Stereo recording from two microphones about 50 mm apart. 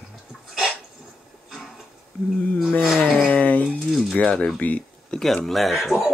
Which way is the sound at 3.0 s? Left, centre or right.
Left.